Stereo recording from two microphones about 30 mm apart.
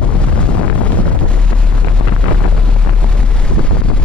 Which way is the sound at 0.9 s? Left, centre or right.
Left.